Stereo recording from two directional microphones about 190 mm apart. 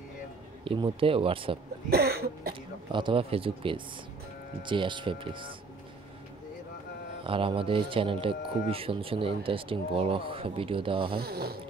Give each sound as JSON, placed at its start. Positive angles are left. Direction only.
{"t": 0.7, "sound": "speech", "side_deg": -25}
{"t": 1.9, "sound": "cough", "side_deg": -55}
{"t": 2.9, "sound": "speech", "side_deg": -25}
{"t": 7.2, "sound": "speech", "side_deg": -30}
{"t": 11.1, "sound": "speech", "side_deg": -55}